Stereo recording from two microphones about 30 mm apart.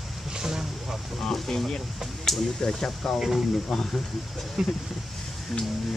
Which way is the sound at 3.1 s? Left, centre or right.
Centre.